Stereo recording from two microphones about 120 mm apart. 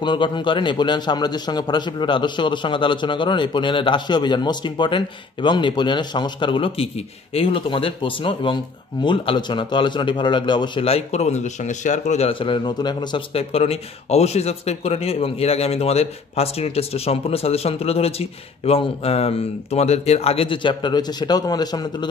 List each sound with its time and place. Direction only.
0.0 s a man's voice: 40° left (ahead or behind)
10.9 s speech: 60° left (ahead or behind); by 12.3 s 80° left
12.3 s a man's voice: 45° left (ahead or behind)
13.3 s speech: 55° left (ahead or behind); by 22.1 s 35° left (ahead or behind)